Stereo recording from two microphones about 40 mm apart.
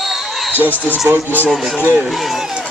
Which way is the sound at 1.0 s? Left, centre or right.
Right.